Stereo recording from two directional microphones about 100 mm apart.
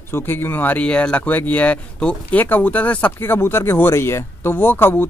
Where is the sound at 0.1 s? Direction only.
20° left (ahead or behind).